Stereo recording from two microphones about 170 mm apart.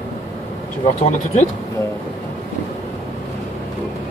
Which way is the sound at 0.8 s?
45° left (ahead or behind).